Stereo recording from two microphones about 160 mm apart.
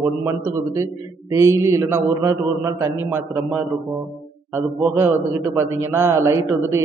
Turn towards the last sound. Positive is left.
turn(degrees=-20)  # may be behind; listen again after turning